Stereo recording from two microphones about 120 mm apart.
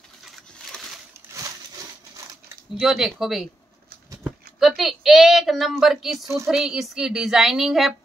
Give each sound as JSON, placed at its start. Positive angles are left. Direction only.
{"t": 2.8, "sound": "a woman's voice", "side_deg": -5}
{"t": 4.6, "sound": "speech", "side_deg": 0}
{"t": 6.1, "sound": "a woman's voice", "side_deg": -25}
{"t": 6.4, "sound": "a woman's voice", "side_deg": -5}